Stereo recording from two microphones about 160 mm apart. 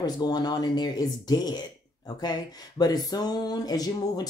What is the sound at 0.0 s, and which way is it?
A woman's voice, 25° left (ahead or behind).